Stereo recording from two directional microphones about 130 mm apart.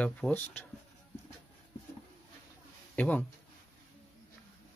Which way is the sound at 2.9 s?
10° left (ahead or behind).